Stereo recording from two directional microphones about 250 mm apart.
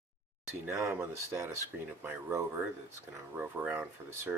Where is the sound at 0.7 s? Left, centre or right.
Centre.